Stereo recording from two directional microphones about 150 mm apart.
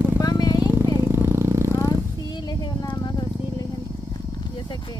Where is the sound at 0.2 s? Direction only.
25° left (ahead or behind).